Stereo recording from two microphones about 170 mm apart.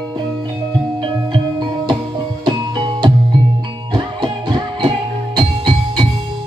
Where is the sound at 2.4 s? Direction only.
25° right (ahead or behind).